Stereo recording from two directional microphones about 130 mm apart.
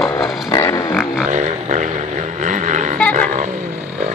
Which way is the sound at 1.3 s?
70° right (ahead or behind).